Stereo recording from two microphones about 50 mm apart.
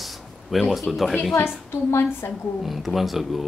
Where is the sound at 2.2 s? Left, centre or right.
Left.